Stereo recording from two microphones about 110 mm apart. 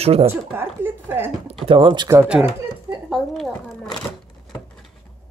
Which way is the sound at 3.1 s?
Centre (ahead or behind).